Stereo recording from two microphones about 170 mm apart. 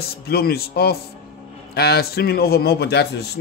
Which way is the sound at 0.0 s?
65° left (ahead or behind).